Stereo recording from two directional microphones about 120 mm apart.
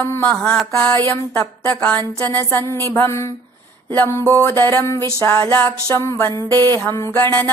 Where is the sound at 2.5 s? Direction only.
20° left (ahead or behind).